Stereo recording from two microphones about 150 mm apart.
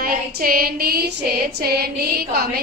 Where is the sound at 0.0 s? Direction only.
75° right (ahead or behind).